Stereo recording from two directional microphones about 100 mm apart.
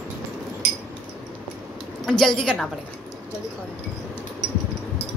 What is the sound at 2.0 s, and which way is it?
Speech, 5° left (ahead or behind).